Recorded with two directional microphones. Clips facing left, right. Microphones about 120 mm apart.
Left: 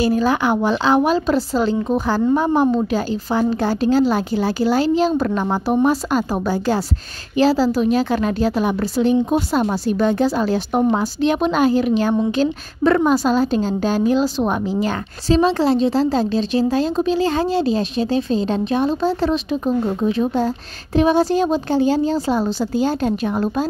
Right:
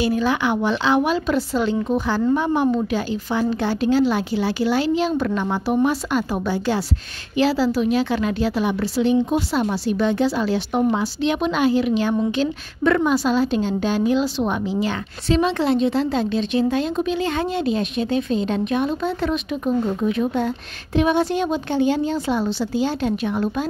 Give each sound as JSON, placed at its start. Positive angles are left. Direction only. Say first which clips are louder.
{"t": 0.0, "sound": "a woman's voice", "louder": "left 3 dB", "side_deg": 40}